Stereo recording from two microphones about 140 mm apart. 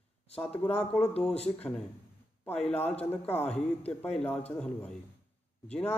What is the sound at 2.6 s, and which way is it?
Speech, 50° left (ahead or behind).